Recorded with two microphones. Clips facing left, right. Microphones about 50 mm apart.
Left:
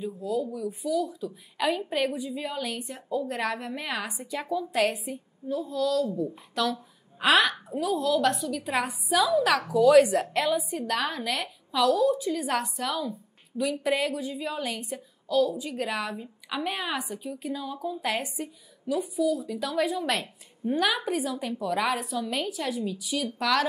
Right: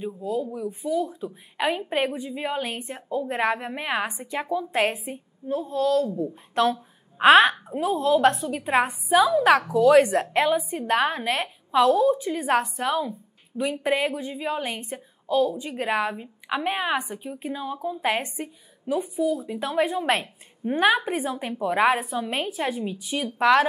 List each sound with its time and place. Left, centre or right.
0.0 s a woman's voice: right
3.1 s a woman's voice: right